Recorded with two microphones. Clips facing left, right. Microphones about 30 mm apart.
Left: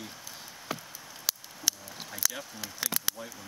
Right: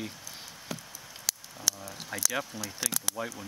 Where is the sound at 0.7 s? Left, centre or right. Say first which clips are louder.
Left 3 dB; left.